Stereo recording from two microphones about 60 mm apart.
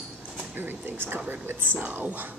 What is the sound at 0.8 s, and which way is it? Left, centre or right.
Speech, right.